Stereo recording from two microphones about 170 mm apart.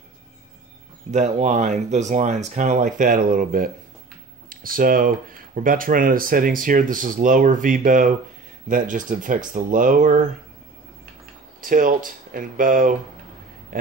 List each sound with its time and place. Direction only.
1.1 s speech: 45° right (ahead or behind)
11.6 s speech: 55° right (ahead or behind)